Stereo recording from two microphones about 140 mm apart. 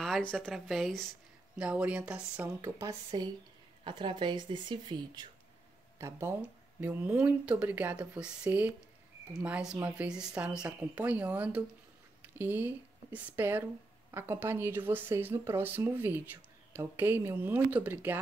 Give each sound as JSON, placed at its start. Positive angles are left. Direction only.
{"t": 0.0, "sound": "a woman's voice", "side_deg": 5}
{"t": 2.8, "sound": "speech", "side_deg": -30}
{"t": 5.9, "sound": "a woman's voice", "side_deg": -20}